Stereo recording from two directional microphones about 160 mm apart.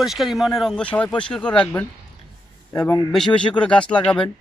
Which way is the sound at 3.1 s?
5° left (ahead or behind).